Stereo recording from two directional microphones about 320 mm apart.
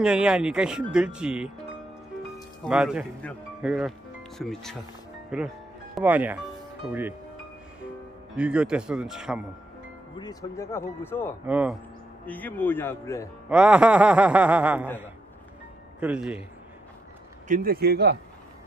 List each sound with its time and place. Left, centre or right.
0.0 s speech: centre
8.4 s speech: centre
10.1 s speech: centre
11.4 s speech: centre
13.5 s speech: centre
16.0 s speech: centre
17.5 s speech: right